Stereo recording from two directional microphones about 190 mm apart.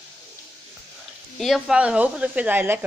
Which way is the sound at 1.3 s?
Centre (ahead or behind).